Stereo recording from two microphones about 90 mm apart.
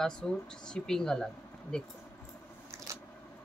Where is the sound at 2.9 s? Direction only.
35° right (ahead or behind).